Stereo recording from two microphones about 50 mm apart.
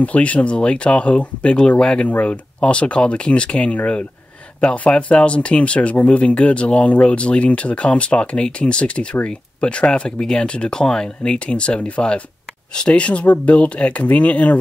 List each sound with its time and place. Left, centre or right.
0.0 s speech: left